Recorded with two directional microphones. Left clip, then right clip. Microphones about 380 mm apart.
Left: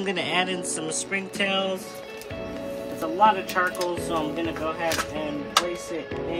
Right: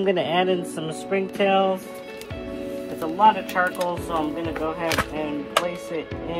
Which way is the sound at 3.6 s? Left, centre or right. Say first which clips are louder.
Right 2 dB; centre.